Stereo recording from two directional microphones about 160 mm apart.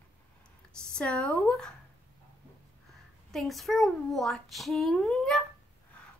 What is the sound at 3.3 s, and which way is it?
A child's voice, centre (ahead or behind).